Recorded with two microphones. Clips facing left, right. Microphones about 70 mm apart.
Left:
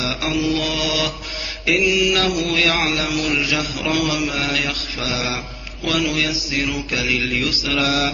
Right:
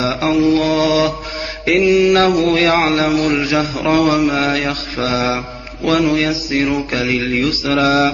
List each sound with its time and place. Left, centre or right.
0.0 s mantra: right